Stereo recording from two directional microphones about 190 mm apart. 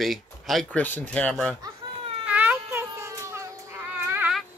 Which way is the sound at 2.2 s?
10° right (ahead or behind).